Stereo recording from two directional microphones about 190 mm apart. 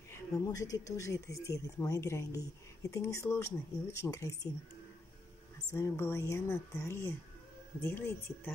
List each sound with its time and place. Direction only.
0.1 s speech: 15° left (ahead or behind)
5.7 s speech: 15° left (ahead or behind)